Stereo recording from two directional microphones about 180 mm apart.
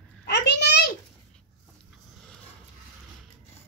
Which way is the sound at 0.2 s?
70° left (ahead or behind).